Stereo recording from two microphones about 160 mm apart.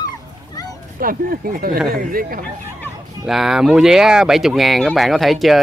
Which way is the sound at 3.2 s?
5° right (ahead or behind).